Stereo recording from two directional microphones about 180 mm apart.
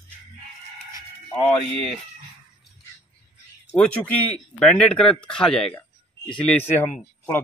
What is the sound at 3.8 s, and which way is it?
Speech, 10° left (ahead or behind).